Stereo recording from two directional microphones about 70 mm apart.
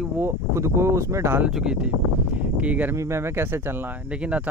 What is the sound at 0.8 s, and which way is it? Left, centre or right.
Speech, right.